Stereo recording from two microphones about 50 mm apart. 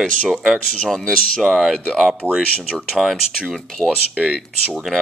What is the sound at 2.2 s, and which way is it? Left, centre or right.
Speech, right.